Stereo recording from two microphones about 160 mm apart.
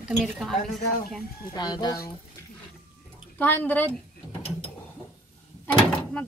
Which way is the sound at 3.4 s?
10° left (ahead or behind).